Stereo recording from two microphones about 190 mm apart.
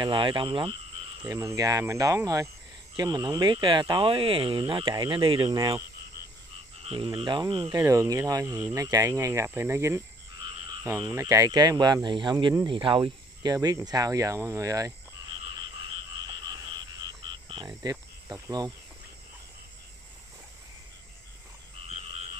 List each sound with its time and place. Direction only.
0.0 s speech: 25° right (ahead or behind)
17.0 s cricket: 25° right (ahead or behind)